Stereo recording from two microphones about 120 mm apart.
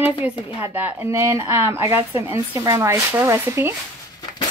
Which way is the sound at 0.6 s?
15° right (ahead or behind).